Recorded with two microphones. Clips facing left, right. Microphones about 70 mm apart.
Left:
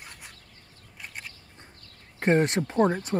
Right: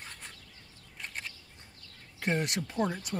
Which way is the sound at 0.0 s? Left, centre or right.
Centre.